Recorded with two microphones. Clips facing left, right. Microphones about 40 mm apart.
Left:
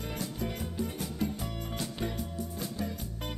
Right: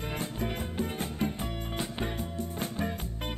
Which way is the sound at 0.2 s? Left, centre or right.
Right.